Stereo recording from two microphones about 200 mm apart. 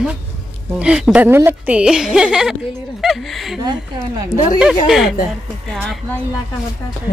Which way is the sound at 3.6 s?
20° right (ahead or behind).